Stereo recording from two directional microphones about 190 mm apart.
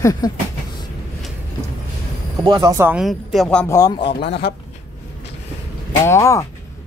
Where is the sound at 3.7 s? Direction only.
20° left (ahead or behind).